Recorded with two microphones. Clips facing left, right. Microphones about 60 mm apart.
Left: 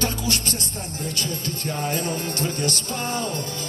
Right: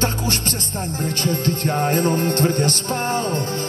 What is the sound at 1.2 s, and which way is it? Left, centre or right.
Music, right.